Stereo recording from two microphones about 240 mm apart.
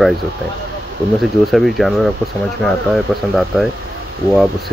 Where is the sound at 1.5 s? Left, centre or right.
Centre.